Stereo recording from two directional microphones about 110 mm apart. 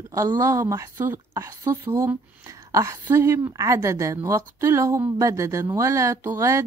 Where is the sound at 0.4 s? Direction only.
30° right (ahead or behind).